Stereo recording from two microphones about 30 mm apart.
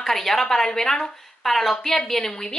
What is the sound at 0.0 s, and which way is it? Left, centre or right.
A woman's voice, centre.